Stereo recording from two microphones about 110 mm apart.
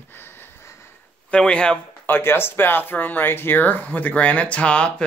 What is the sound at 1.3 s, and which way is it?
Speech, 10° left (ahead or behind).